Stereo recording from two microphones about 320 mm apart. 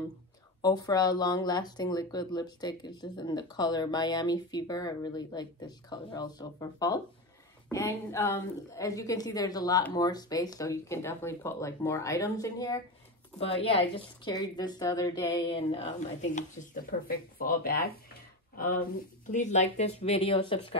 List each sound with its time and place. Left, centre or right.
0.6 s speech: centre
16.3 s speech: left